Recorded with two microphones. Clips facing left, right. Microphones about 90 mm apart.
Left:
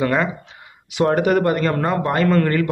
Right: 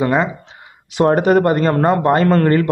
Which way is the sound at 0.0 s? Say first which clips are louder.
Right 3 dB; 20° right (ahead or behind).